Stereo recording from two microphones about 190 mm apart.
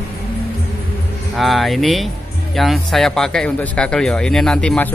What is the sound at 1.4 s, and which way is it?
Speech, centre (ahead or behind).